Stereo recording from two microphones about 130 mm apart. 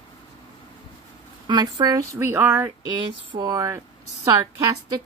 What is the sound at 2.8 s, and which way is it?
Speech, 30° right (ahead or behind).